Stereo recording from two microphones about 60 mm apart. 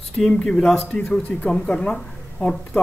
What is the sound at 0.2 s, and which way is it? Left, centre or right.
Speech, centre.